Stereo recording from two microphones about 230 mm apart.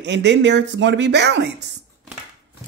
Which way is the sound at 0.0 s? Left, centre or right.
Right.